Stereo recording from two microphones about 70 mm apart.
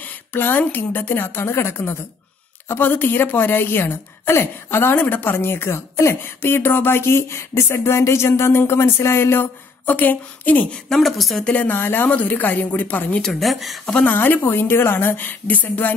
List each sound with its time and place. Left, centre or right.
0.0 s a woman's voice: left
10.7 s a woman's voice: centre
11.4 s a woman's voice: left
13.2 s a woman's voice: centre
14.0 s a woman's voice: left